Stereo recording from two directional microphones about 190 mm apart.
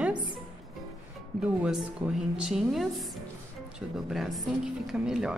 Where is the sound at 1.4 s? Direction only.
5° right (ahead or behind).